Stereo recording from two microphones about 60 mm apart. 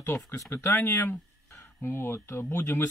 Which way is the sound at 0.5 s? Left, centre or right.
Left.